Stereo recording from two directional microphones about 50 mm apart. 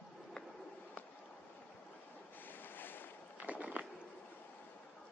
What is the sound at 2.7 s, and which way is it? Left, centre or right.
Boat, left.